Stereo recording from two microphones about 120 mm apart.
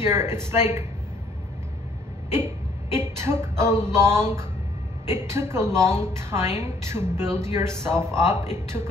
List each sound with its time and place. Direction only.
0.0 s a woman's voice: 20° right (ahead or behind)
2.3 s a woman's voice: 20° right (ahead or behind)